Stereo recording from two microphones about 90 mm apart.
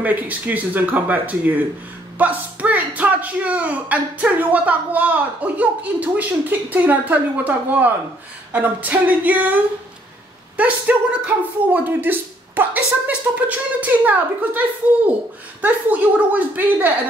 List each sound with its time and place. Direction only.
0.0 s speech: 20° right (ahead or behind)
10.6 s speech: 15° right (ahead or behind)
15.6 s a woman's voice: 20° right (ahead or behind)